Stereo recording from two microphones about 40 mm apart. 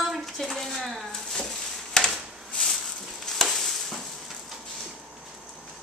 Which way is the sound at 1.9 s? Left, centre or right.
Centre.